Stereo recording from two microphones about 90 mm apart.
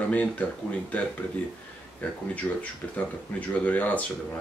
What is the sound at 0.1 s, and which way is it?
Speech, 15° left (ahead or behind).